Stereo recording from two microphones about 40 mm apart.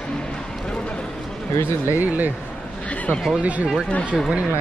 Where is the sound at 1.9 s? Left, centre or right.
Right.